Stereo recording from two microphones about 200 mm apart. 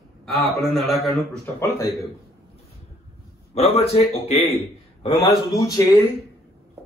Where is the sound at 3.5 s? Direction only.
30° left (ahead or behind).